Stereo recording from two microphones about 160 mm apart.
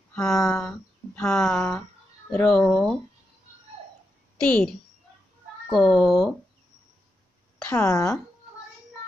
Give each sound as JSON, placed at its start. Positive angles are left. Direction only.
{"t": 0.1, "sound": "speech", "side_deg": 5}
{"t": 4.4, "sound": "a woman's voice", "side_deg": 5}
{"t": 7.8, "sound": "a woman's voice", "side_deg": 20}